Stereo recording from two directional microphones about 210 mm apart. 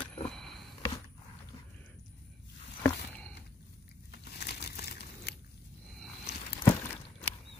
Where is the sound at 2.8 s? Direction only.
5° left (ahead or behind).